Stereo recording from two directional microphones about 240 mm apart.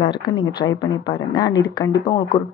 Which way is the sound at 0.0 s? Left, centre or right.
Centre.